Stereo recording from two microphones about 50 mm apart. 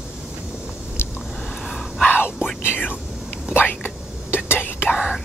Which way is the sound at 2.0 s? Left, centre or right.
Left.